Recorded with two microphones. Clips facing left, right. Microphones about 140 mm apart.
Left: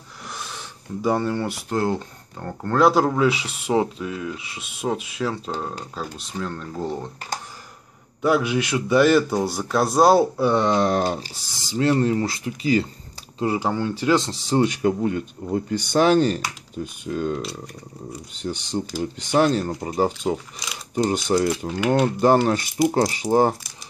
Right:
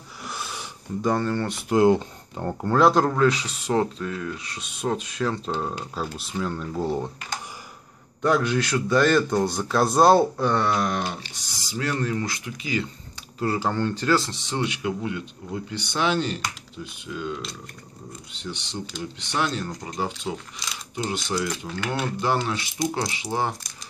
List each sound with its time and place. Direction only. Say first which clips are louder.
0.3 s a sound: right 1 dB; 5° right (ahead or behind)
1.0 s speech: left 2 dB; 10° left (ahead or behind)
1.7 s speech: right 7 dB; 15° right (ahead or behind)
2.6 s a man's voice: left 1 dB; centre (ahead or behind)
8.2 s a man's voice: left 2 dB; 10° left (ahead or behind)
10.7 s speech: left 5 dB; 30° left (ahead or behind)
13.4 s speech: left 2 dB; 15° left (ahead or behind)
14.4 s speech: left 8 dB; 40° left (ahead or behind)